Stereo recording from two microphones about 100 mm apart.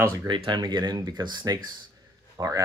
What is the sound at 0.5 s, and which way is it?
Speech, 45° right (ahead or behind).